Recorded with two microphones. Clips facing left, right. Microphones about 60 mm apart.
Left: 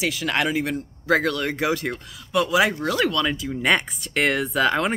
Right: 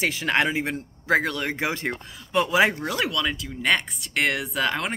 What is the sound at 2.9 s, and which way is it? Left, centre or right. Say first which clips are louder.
Speech: left 4 dB; centre.